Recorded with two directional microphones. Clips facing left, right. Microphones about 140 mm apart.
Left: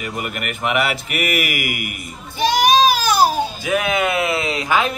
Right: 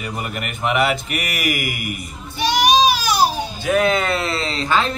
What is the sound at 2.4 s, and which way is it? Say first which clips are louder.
Child singing: left 1 dB; 50° left (ahead or behind).